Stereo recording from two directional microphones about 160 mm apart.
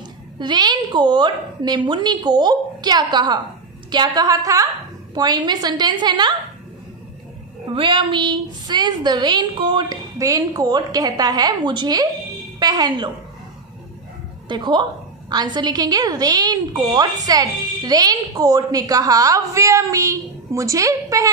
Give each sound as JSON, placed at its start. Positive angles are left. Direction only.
{"t": 0.4, "sound": "a woman's voice", "side_deg": -25}
{"t": 7.7, "sound": "a woman's voice", "side_deg": -30}
{"t": 14.5, "sound": "a woman's voice", "side_deg": -30}